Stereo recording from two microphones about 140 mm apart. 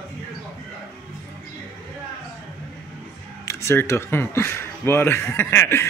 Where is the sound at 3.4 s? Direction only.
20° left (ahead or behind).